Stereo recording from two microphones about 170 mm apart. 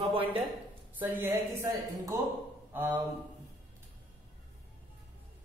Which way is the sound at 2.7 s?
10° right (ahead or behind).